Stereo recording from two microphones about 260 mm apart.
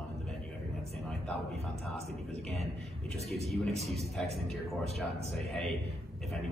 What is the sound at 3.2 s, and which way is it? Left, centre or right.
Speech, right.